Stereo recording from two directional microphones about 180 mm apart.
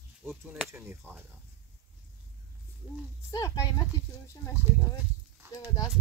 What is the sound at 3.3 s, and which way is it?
Speech, 20° left (ahead or behind).